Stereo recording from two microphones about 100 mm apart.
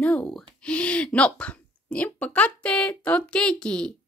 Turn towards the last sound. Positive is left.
turn(degrees=10)  # may be behind; listen again after turning